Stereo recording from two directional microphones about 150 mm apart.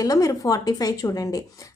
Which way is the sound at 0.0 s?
25° left (ahead or behind).